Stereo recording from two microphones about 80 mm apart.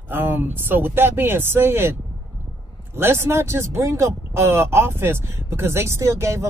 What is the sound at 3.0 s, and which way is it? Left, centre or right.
Speech, right.